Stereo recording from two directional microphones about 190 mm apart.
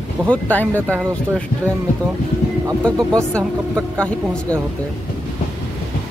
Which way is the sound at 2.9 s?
15° right (ahead or behind).